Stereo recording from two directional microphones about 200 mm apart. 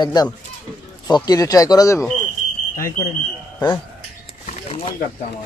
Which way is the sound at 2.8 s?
45° left (ahead or behind).